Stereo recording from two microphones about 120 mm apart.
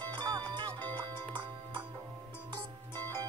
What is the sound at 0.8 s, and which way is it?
Music, 15° left (ahead or behind).